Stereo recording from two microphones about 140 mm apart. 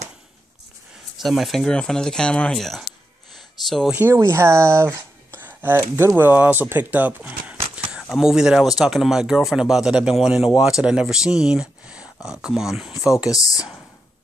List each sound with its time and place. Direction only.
1.1 s speech: centre (ahead or behind)
3.3 s a sound: centre (ahead or behind)
3.9 s speech: 15° right (ahead or behind)
13.3 s speech: 25° left (ahead or behind)